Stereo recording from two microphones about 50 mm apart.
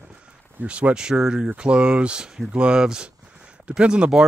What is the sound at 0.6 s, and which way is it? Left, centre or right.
Speech, right.